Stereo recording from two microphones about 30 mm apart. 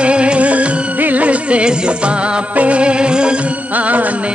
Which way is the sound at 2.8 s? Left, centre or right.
Right.